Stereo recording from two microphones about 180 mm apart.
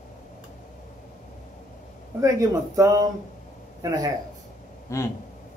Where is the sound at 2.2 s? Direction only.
20° right (ahead or behind).